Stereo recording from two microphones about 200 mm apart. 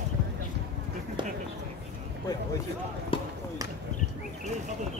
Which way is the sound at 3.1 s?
25° left (ahead or behind).